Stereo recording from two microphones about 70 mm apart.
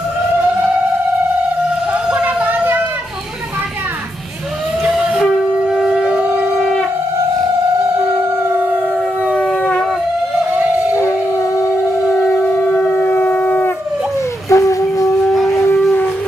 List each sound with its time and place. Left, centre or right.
1.9 s a sound: centre
5.7 s shofar: centre
10.4 s a sound: centre
11.0 s music: left
12.3 s shofar: centre
12.6 s siren: centre
12.9 s shofar: left
14.5 s a sound: left
15.3 s shofar: centre